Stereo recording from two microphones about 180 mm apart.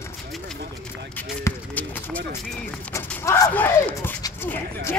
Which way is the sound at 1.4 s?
10° left (ahead or behind).